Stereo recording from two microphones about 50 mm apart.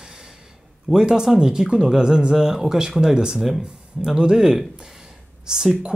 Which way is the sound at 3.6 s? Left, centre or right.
Centre.